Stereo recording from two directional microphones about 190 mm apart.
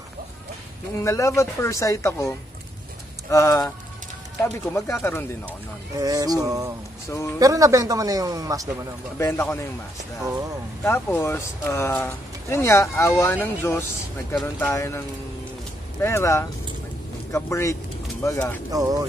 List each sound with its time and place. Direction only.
1.0 s speech: 15° left (ahead or behind)
3.3 s speech: 15° left (ahead or behind)
5.9 s speech: 20° right (ahead or behind)
7.1 s speech: 15° left (ahead or behind)
7.3 s a man's voice: 20° right (ahead or behind)
9.2 s speech: 15° left (ahead or behind)
10.8 s speech: 10° left (ahead or behind)
18.7 s speech: 20° right (ahead or behind)